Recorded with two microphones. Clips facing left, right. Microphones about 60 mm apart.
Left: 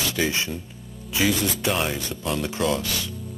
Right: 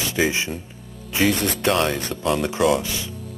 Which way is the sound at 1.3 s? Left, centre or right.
Right.